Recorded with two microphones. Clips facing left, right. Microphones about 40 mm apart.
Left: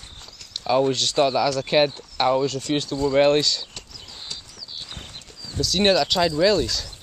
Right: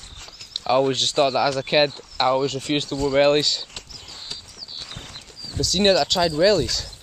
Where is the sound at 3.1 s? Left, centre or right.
Centre.